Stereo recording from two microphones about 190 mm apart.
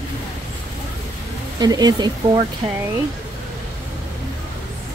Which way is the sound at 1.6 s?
20° right (ahead or behind).